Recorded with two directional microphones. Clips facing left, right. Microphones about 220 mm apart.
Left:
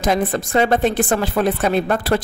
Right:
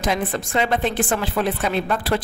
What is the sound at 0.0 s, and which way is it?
A woman's voice, 40° left (ahead or behind).